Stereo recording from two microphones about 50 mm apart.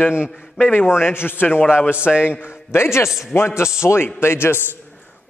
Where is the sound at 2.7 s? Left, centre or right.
Left.